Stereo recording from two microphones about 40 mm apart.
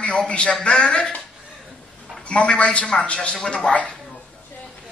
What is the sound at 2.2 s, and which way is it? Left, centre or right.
A man's voice, left.